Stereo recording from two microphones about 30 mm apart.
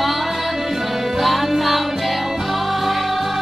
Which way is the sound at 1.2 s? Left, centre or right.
Centre.